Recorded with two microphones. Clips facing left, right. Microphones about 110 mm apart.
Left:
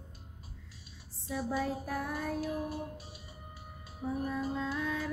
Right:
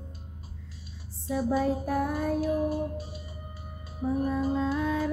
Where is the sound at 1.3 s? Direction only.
5° right (ahead or behind).